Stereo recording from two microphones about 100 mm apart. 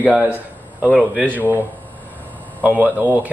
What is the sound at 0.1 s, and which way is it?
A man's voice, 15° right (ahead or behind).